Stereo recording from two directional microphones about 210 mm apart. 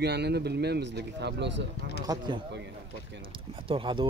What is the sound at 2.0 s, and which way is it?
Speech, 20° right (ahead or behind).